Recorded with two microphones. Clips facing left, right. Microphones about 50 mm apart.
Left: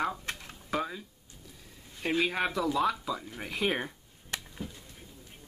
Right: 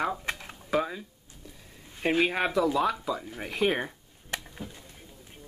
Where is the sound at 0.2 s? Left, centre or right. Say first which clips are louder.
Right 5 dB; right.